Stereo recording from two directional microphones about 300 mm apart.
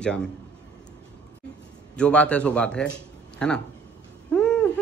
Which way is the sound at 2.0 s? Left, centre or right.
Centre.